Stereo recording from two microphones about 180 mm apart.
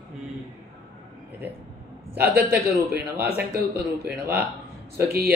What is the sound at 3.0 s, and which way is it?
Speech, 10° right (ahead or behind).